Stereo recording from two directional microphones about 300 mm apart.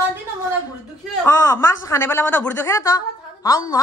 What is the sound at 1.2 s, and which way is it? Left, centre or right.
A woman's voice, centre.